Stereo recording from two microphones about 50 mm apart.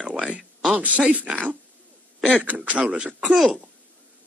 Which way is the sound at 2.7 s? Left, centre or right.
Right.